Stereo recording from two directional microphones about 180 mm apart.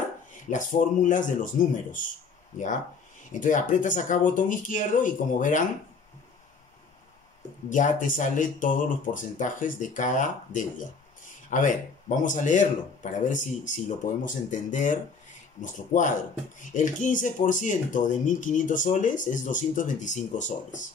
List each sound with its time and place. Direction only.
0.5 s speech: 45° left (ahead or behind)
3.3 s speech: 45° left (ahead or behind)
7.7 s speech: 45° left (ahead or behind)